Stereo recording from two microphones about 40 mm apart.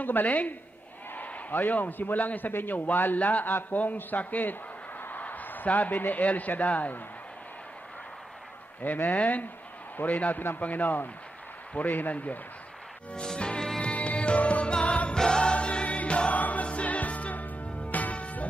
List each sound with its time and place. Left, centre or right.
0.0 s a man's voice: left
5.2 s a sound: left
6.2 s speech: left
8.8 s speech: left
13.1 s music: left
15.1 s choir: centre
15.5 s music: left